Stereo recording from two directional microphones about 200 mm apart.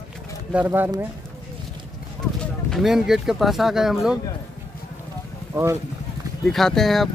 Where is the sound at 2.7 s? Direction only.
Centre (ahead or behind).